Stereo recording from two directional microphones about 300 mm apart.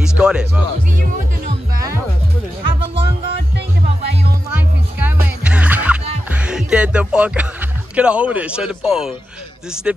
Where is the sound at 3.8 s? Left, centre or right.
Centre.